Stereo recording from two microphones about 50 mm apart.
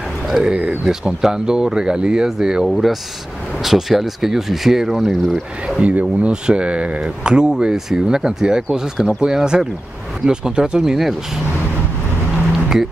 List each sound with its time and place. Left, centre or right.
0.3 s speech: centre
5.8 s speech: right
10.8 s speech: centre